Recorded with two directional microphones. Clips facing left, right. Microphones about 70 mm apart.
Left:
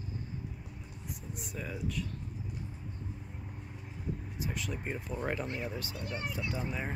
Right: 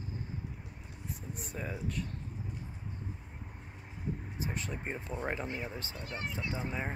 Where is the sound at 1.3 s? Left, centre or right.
Right.